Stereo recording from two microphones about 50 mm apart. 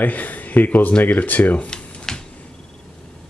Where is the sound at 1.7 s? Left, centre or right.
Centre.